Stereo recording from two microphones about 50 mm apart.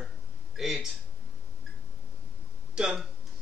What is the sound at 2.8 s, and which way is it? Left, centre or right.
Speech, centre.